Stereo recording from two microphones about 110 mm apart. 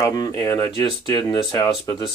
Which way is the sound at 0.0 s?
35° left (ahead or behind).